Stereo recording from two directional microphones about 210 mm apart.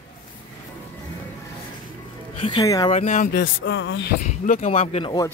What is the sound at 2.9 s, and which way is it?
Speech, 35° left (ahead or behind).